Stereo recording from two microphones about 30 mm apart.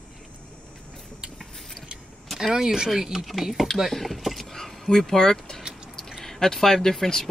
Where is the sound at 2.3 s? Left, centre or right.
Centre.